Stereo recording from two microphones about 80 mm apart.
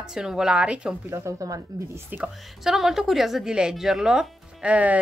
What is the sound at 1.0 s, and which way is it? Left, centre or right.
Speech, right.